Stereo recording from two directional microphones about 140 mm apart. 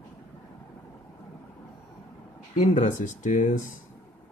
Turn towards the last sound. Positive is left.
turn(degrees=65)  # may be behind; listen again after turning